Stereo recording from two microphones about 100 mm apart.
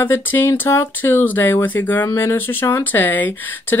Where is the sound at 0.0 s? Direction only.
20° left (ahead or behind).